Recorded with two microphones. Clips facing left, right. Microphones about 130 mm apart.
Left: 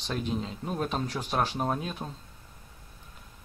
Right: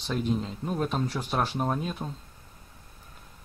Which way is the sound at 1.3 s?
5° left (ahead or behind).